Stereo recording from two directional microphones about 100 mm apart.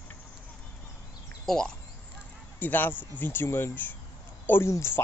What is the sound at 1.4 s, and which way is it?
Speech, 5° left (ahead or behind).